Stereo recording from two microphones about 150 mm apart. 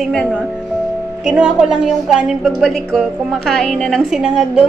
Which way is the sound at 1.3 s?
5° right (ahead or behind).